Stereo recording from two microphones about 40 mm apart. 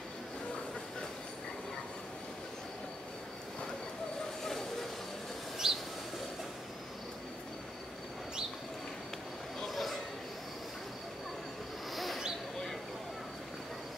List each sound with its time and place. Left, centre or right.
4.5 s vehicle: centre
5.6 s vehicle: centre
9.7 s chatter: centre
11.9 s a sound: centre